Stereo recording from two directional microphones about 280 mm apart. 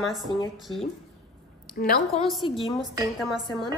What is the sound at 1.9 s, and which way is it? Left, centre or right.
Speech, left.